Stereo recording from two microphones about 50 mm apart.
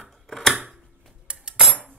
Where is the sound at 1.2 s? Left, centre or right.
Centre.